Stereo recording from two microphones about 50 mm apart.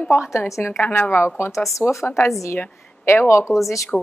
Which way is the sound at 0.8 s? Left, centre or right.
Left.